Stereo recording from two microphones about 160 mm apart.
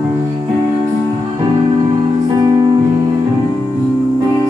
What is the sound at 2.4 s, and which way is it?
Music, 25° right (ahead or behind).